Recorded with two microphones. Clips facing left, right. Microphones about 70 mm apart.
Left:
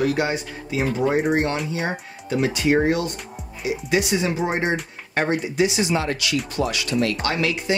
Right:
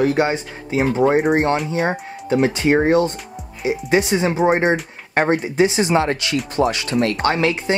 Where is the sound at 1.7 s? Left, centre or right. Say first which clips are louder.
Right 6 dB; right.